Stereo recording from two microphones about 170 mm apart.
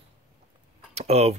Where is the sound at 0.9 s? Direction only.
40° right (ahead or behind).